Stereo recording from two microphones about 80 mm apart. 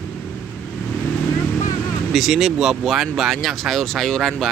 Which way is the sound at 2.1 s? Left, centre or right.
Centre.